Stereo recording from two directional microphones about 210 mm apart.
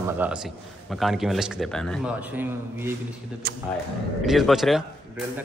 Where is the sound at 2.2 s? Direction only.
10° right (ahead or behind).